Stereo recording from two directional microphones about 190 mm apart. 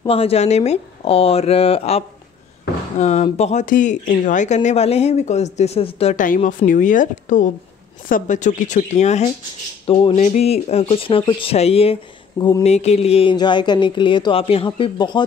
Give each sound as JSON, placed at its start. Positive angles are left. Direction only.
{"t": 0.0, "sound": "speech", "side_deg": 30}
{"t": 12.4, "sound": "speech", "side_deg": 20}
{"t": 12.6, "sound": "speech", "side_deg": 35}